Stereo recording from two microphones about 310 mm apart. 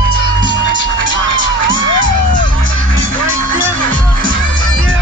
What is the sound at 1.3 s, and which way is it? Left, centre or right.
Crowd, left.